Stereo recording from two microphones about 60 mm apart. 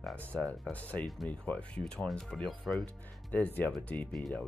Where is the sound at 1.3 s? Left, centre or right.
Centre.